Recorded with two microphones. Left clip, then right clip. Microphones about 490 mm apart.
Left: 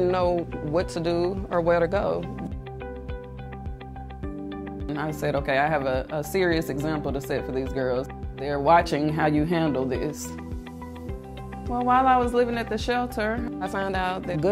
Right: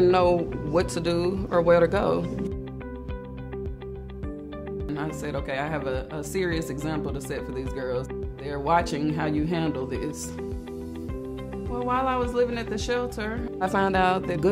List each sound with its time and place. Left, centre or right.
0.0 s speech: left
4.9 s speech: left
11.7 s speech: left